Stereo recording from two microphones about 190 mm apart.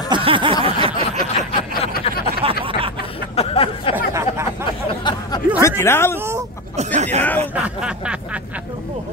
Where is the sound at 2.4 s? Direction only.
30° right (ahead or behind).